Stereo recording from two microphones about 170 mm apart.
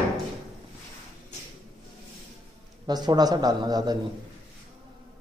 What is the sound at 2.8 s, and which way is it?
Speech, 25° right (ahead or behind).